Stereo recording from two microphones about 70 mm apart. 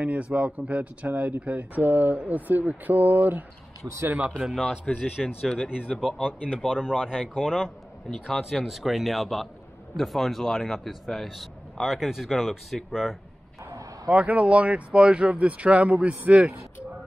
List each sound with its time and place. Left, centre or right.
0.0 s speech: centre
3.8 s speech: right
4.9 s speech: centre
6.2 s speech: centre
13.7 s vehicle: right
14.1 s speech: centre